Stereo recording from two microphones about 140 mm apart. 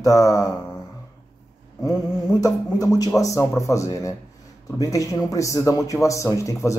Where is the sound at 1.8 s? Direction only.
25° left (ahead or behind).